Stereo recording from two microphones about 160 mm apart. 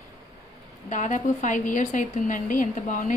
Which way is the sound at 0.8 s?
50° left (ahead or behind).